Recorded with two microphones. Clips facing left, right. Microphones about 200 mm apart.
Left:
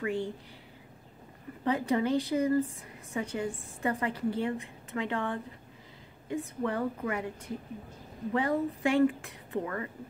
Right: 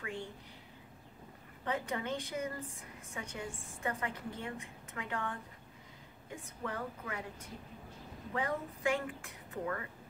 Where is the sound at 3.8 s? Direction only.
35° left (ahead or behind).